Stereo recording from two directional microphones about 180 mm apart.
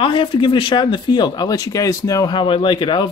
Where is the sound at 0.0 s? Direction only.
25° left (ahead or behind).